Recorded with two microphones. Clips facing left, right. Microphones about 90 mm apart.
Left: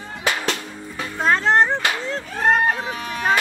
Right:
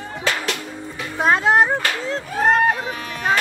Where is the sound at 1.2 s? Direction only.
10° right (ahead or behind).